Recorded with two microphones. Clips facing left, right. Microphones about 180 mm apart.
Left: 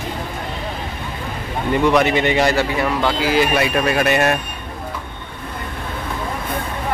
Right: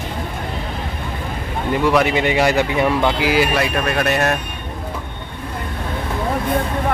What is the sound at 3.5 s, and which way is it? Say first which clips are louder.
Speech: left 2 dB; 5° left (ahead or behind).